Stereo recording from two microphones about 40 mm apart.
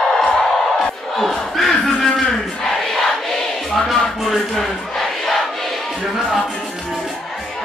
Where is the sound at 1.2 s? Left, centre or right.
Centre.